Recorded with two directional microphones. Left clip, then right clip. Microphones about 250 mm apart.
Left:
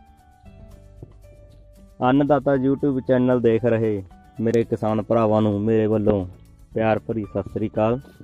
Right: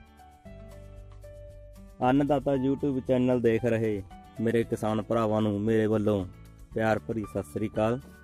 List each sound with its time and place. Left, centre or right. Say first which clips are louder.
2.0 s speech: left 6 dB; centre